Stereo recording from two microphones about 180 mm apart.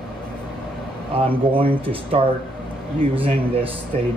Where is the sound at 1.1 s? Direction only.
30° right (ahead or behind).